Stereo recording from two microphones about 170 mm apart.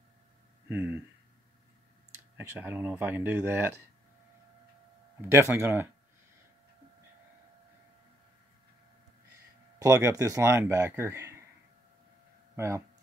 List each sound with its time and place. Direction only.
0.7 s speech: 10° right (ahead or behind)
2.3 s speech: 10° right (ahead or behind)
5.3 s speech: 15° right (ahead or behind)
9.8 s speech: 15° right (ahead or behind)
12.5 s speech: 15° right (ahead or behind)